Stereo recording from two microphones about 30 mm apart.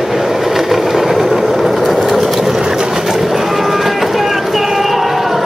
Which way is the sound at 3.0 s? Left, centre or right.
Centre.